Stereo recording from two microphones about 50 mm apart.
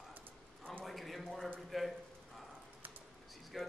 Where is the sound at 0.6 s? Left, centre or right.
Centre.